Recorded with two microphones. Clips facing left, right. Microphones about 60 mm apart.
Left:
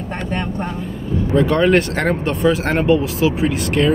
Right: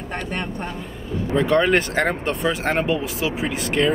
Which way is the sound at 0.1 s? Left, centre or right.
Left.